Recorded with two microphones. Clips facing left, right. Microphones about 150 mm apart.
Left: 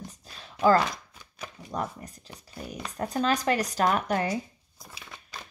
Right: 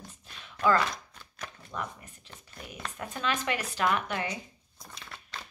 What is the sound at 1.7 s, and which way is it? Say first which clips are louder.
Speech: left 6 dB; 35° left (ahead or behind).